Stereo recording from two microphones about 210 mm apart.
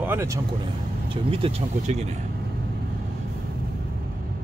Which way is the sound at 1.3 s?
25° right (ahead or behind).